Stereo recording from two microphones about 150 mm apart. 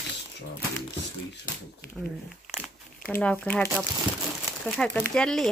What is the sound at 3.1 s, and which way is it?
Speech, 10° left (ahead or behind).